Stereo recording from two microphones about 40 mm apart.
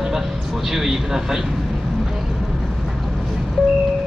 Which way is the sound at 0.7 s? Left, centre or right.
Centre.